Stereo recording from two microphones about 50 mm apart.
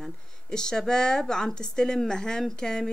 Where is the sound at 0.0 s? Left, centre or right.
Centre.